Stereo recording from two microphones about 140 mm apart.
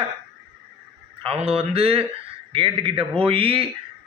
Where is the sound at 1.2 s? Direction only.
45° right (ahead or behind).